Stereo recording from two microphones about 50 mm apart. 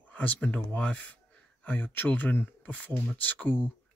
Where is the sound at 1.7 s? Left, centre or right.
Left.